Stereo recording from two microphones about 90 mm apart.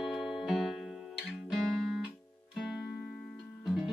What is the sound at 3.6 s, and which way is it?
Music, 5° right (ahead or behind).